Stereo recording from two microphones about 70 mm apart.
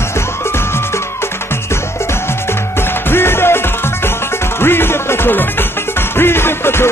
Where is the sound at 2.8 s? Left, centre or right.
Left.